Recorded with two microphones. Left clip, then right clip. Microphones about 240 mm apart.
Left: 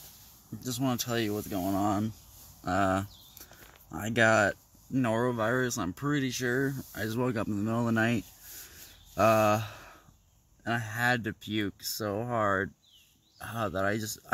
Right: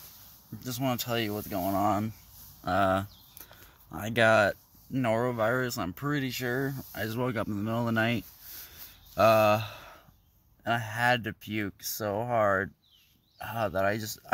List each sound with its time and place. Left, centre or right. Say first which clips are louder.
0.7 s speech: right 1 dB; centre
2.6 s a sound: right 2 dB; centre
3.9 s speech: right 1 dB; centre